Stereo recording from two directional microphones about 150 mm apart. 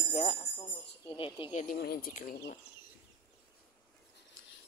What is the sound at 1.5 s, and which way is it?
Speech, 55° left (ahead or behind).